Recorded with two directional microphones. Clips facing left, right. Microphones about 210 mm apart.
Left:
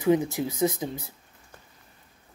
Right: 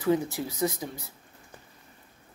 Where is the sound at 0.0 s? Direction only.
20° left (ahead or behind).